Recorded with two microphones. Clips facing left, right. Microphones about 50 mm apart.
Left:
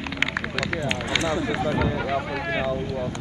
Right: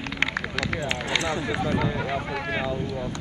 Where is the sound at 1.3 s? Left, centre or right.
Right.